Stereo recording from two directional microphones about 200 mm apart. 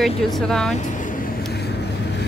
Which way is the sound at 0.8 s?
40° left (ahead or behind).